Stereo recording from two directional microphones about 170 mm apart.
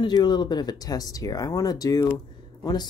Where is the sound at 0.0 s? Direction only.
25° left (ahead or behind).